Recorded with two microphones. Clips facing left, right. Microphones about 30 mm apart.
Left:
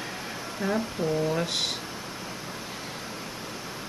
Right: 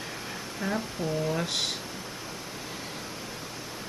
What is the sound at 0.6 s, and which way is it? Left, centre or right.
Speech, centre.